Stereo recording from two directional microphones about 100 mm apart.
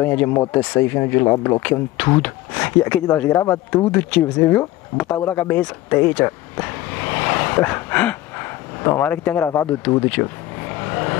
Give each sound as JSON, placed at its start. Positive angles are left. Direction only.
{"t": 0.0, "sound": "speech", "side_deg": 15}
{"t": 1.6, "sound": "speech", "side_deg": 15}
{"t": 9.8, "sound": "vehicle", "side_deg": 15}